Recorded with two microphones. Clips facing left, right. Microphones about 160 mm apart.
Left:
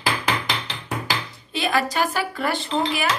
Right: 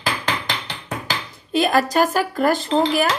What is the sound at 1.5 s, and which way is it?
Speech, 45° right (ahead or behind).